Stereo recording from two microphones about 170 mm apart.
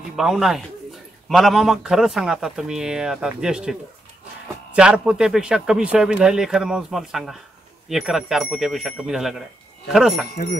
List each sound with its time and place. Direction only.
0.1 s speech: 5° right (ahead or behind)
4.7 s speech: 5° right (ahead or behind)
10.3 s speech: 55° left (ahead or behind)